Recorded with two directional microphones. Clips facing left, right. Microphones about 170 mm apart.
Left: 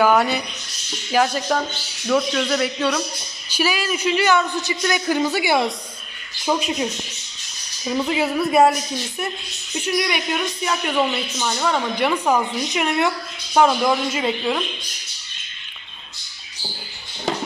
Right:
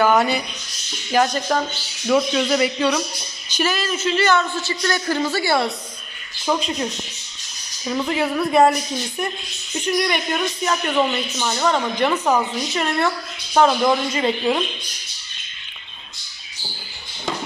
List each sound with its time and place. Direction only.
1.1 s a woman's voice: 5° left (ahead or behind)
2.0 s a woman's voice: 5° right (ahead or behind)
3.4 s speech: 10° left (ahead or behind)
9.8 s a woman's voice: 5° left (ahead or behind)